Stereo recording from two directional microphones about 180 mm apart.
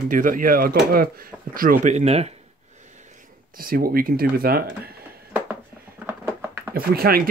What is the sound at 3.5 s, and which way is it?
Speech, 55° right (ahead or behind).